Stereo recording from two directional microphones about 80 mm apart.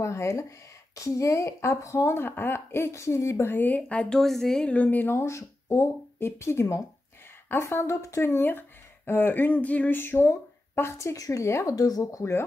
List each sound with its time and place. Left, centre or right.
0.0 s speech: left; by 4.2 s centre
4.2 s a woman's voice: centre
4.7 s speech: left
11.1 s speech: left
11.7 s speech: left